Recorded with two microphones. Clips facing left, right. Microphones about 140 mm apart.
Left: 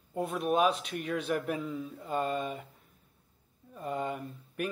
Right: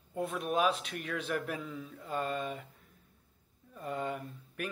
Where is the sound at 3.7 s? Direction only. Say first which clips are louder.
Left 2 dB; 15° left (ahead or behind).